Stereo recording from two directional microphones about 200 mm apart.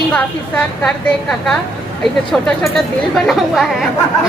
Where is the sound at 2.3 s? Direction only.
Centre (ahead or behind).